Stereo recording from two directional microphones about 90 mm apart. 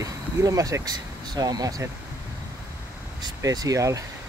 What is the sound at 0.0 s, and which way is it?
Speech, 40° right (ahead or behind).